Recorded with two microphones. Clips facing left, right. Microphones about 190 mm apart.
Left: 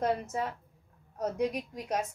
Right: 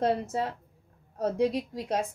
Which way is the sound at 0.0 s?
30° right (ahead or behind).